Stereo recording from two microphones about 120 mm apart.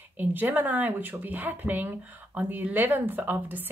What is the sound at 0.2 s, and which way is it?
Speech, 15° right (ahead or behind).